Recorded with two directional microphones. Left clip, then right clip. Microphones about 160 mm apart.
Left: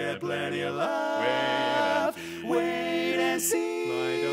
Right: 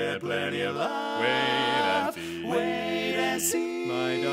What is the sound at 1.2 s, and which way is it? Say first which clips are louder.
Music: right 4 dB; 25° right (ahead or behind).